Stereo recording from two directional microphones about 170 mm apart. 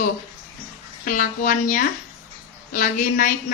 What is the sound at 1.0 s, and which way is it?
Speech, 55° left (ahead or behind).